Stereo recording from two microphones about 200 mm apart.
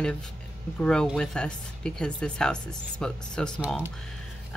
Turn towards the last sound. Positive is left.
turn(degrees=5)  # may be behind; listen again after turning